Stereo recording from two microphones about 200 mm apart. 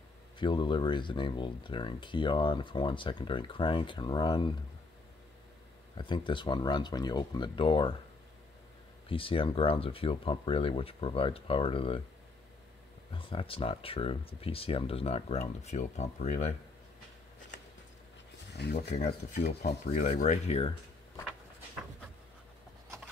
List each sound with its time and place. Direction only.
0.4 s speech: 25° left (ahead or behind)
5.9 s speech: 25° left (ahead or behind)
9.1 s speech: 25° left (ahead or behind)
13.1 s speech: 25° left (ahead or behind)
18.5 s speech: 55° left (ahead or behind)
19.9 s speech: 35° left (ahead or behind)